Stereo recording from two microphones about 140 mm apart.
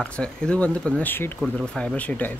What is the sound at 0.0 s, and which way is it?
Speech, 5° left (ahead or behind).